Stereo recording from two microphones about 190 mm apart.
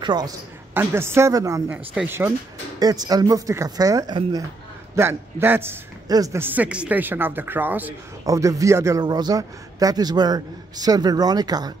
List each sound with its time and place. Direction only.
0.0 s a man's voice: 20° right (ahead or behind)